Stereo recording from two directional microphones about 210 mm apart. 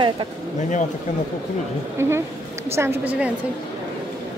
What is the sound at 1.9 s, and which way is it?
A woman's voice, 10° right (ahead or behind).